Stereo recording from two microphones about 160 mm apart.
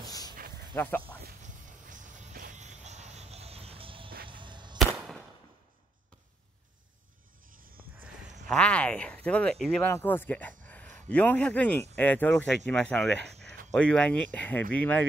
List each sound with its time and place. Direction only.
0.7 s speech: 10° left (ahead or behind)
1.4 s music: 50° right (ahead or behind); by 4.1 s 35° right (ahead or behind)
4.3 s a sound: 30° right (ahead or behind)
4.7 s firecracker: centre (ahead or behind)
8.5 s speech: 5° left (ahead or behind)
10.6 s a sound: 10° left (ahead or behind)
11.9 s speech: 10° left (ahead or behind)